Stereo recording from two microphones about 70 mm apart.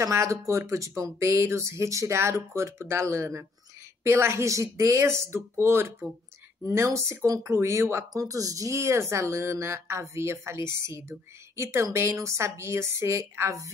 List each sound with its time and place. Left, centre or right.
0.0 s speech: right
6.6 s speech: right
8.1 s speech: right